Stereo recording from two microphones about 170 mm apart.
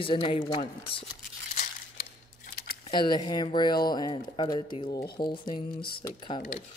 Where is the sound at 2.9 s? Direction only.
25° left (ahead or behind).